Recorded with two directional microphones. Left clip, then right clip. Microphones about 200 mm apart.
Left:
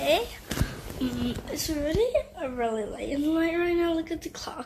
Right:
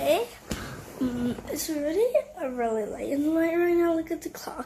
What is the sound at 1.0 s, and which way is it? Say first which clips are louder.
Speech: right 2 dB; 20° right (ahead or behind).